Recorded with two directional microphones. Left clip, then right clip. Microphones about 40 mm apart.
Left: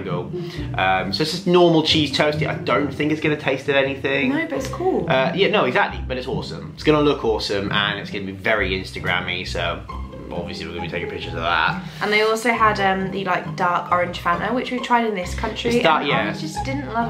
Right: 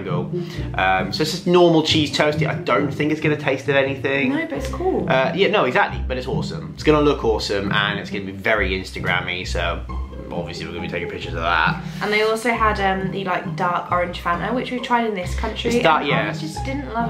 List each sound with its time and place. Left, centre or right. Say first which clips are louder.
0.7 s speech: right 1 dB; centre
10.9 s speech: right 2 dB; centre
12.1 s speech: left 1 dB; centre
13.7 s speech: left 2 dB; centre
14.4 s speech: left 1 dB; centre
14.9 s speech: left 1 dB; centre
15.6 s speech: right 1 dB; centre
16.7 s speech: even; centre